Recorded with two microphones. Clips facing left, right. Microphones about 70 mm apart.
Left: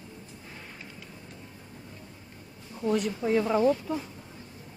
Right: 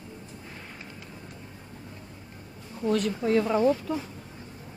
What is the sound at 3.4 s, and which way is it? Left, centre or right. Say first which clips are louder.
Speech: even; centre.